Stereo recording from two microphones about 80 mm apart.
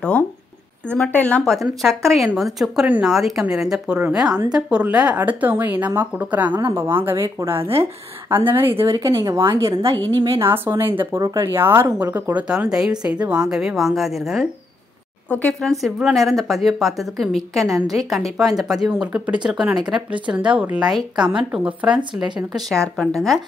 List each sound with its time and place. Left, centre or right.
0.8 s speech: centre
1.4 s a woman's voice: centre; by 6.6 s right
6.7 s a woman's voice: right
8.9 s a woman's voice: right
10.5 s speech: right
11.1 s a woman's voice: right
11.5 s speech: right
12.4 s a woman's voice: centre
15.2 s speech: centre
15.7 s a woman's voice: centre
18.9 s speech: centre
22.5 s a woman's voice: centre